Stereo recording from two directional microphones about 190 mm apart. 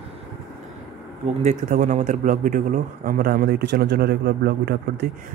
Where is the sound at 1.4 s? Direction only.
40° right (ahead or behind); by 4.7 s 60° right (ahead or behind).